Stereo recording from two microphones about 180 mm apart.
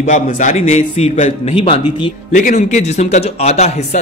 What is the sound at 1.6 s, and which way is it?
Speech, 30° left (ahead or behind).